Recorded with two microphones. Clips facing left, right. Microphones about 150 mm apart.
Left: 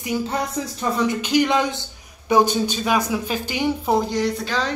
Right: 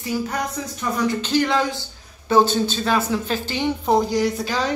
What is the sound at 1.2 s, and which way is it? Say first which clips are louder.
Speech: left 2 dB; 15° left (ahead or behind).